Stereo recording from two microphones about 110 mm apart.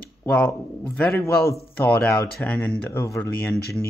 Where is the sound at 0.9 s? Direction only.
10° left (ahead or behind).